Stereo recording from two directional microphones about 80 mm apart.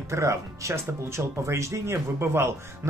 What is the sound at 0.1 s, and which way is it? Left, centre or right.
Speech, right.